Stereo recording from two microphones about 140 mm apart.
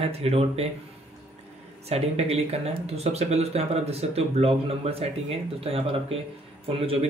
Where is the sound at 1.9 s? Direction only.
50° right (ahead or behind).